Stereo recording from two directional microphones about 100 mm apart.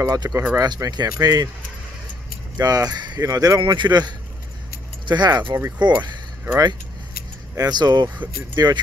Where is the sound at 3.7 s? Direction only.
45° right (ahead or behind).